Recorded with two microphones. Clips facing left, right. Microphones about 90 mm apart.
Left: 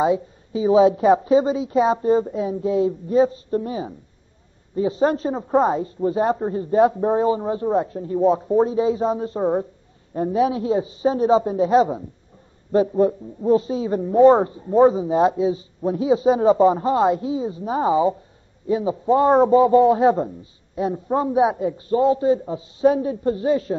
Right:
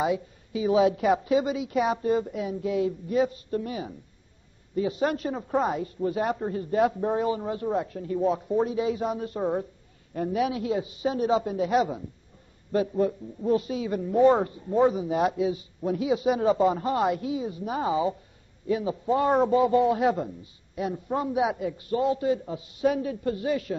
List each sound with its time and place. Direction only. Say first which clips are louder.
0.0 s a man's voice: left 7 dB; 30° left (ahead or behind)